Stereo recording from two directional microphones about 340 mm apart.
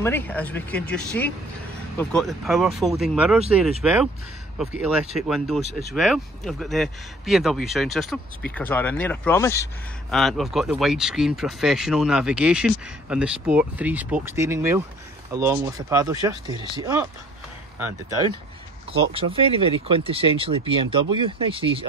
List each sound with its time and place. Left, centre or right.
0.0 s speech: centre
18.9 s speech: centre